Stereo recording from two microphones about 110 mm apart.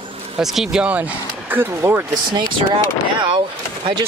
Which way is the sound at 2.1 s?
45° right (ahead or behind).